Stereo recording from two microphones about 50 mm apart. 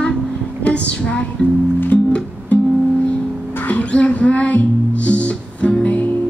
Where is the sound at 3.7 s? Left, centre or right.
Left.